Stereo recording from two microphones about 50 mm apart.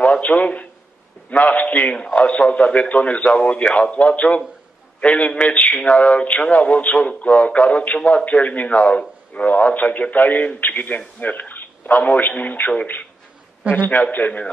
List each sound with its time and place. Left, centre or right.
0.0 s a man's voice: left
14.1 s speech: left